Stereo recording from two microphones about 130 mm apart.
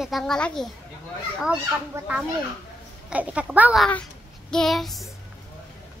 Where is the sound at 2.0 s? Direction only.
20° right (ahead or behind).